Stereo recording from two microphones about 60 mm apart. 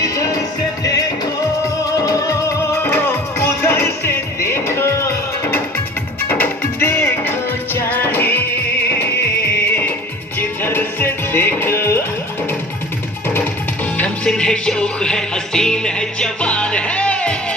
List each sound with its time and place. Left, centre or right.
0.0 s music: left
1.9 s music: left
2.8 s music: left
6.2 s music: left
6.8 s music: left
10.6 s music: left
13.9 s music: centre